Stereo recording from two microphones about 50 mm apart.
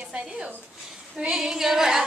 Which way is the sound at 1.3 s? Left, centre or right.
Centre.